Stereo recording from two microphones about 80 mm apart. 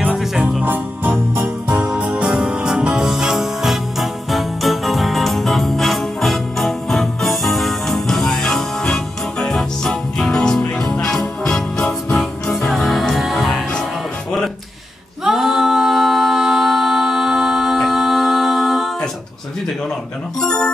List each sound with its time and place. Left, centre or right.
0.1 s music: centre
0.4 s music: right; by 13.8 s centre
15.2 s a capella: centre
20.3 s music: centre